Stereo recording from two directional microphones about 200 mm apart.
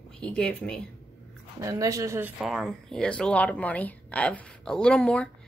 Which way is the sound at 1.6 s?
15° right (ahead or behind).